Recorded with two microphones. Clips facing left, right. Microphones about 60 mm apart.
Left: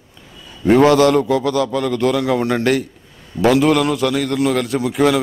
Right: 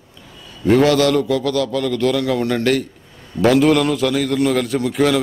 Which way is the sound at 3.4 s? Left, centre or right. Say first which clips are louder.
Even; centre.